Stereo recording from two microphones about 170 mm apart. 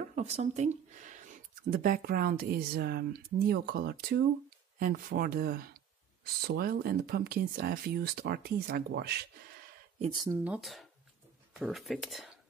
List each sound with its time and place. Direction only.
0.1 s speech: 40° right (ahead or behind); by 9.2 s 70° right (ahead or behind)
10.3 s speech: 10° right (ahead or behind)